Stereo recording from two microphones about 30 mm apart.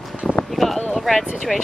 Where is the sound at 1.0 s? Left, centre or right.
Centre.